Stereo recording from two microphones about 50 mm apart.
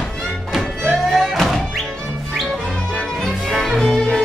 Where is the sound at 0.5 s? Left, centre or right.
Centre.